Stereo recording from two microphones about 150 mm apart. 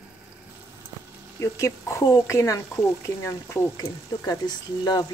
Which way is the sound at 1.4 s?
20° left (ahead or behind).